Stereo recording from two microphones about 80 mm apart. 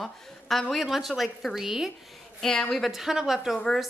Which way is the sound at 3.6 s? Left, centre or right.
Centre.